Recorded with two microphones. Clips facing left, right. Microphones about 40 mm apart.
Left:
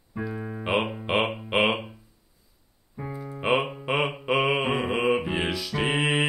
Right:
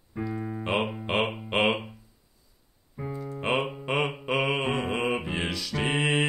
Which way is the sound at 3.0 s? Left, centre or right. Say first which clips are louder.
Even; centre.